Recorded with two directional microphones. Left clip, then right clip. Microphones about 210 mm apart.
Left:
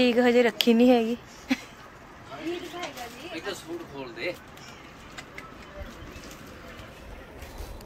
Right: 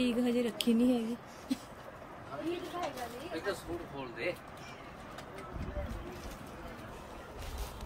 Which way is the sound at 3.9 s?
10° right (ahead or behind).